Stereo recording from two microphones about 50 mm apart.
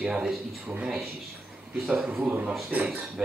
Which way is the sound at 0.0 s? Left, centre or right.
Centre.